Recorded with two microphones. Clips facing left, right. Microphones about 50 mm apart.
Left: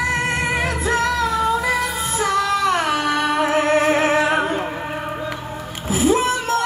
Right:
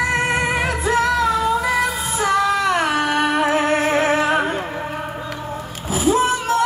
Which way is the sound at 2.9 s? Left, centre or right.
Right.